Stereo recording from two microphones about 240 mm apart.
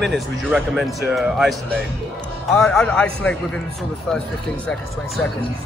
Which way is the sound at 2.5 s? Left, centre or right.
Centre.